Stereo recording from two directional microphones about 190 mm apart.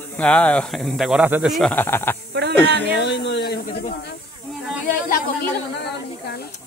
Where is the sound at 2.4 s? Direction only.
60° right (ahead or behind).